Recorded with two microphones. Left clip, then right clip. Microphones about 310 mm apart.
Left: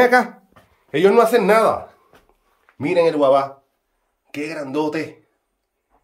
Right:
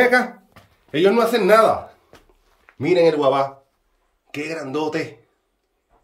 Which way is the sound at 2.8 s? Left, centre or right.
Centre.